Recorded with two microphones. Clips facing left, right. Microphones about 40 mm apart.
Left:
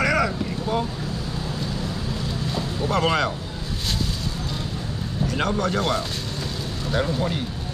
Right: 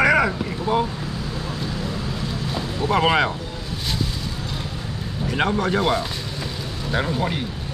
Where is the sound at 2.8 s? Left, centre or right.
Centre.